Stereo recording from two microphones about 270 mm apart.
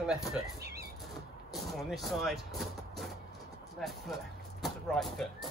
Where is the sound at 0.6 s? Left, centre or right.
Right.